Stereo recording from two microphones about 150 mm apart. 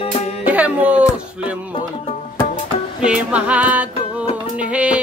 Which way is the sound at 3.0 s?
10° right (ahead or behind).